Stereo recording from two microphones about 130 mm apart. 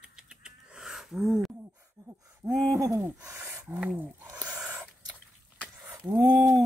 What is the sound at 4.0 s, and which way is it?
Speech, 15° right (ahead or behind).